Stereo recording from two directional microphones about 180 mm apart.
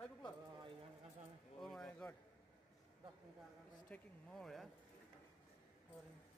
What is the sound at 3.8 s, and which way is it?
Speech, 5° left (ahead or behind).